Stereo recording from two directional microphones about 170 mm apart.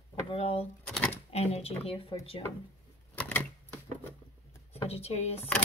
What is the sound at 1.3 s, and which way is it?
Speech, 40° left (ahead or behind).